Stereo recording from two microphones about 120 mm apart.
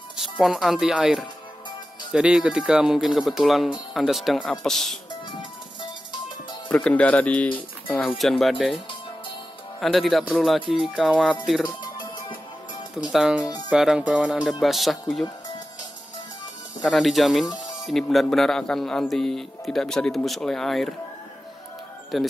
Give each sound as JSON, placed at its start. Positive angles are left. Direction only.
{"t": 0.2, "sound": "a man's voice", "side_deg": -5}
{"t": 6.7, "sound": "speech", "side_deg": 10}
{"t": 8.2, "sound": "a man's voice", "side_deg": 0}
{"t": 9.8, "sound": "a man's voice", "side_deg": 0}
{"t": 11.6, "sound": "music", "side_deg": 40}
{"t": 13.1, "sound": "a man's voice", "side_deg": -5}
{"t": 16.8, "sound": "a man's voice", "side_deg": 0}
{"t": 22.1, "sound": "a man's voice", "side_deg": 0}